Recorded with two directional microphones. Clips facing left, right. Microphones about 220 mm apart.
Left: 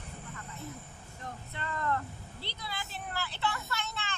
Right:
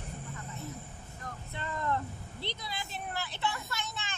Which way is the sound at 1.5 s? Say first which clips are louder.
Even; 15° right (ahead or behind).